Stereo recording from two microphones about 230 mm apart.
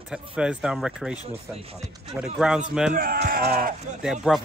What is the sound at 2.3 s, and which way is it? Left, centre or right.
Speech, centre.